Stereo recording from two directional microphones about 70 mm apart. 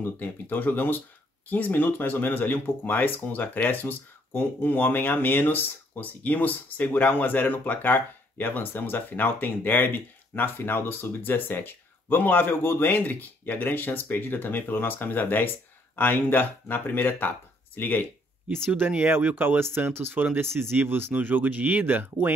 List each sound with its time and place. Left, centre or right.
0.0 s speech: left
18.7 s speech: right